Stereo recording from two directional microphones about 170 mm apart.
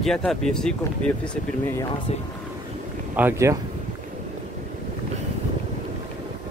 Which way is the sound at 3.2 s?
15° right (ahead or behind).